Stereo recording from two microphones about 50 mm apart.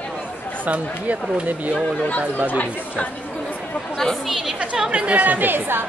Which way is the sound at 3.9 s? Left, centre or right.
Centre.